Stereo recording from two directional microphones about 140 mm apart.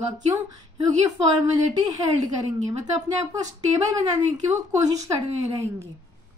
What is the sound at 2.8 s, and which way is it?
A woman's voice, 30° right (ahead or behind).